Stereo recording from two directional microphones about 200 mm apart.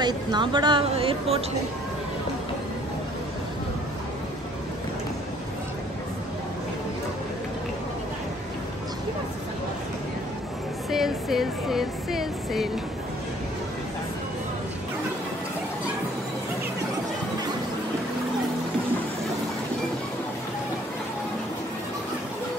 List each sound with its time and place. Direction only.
0.0 s a woman's voice: 20° right (ahead or behind)
10.9 s speech: centre (ahead or behind)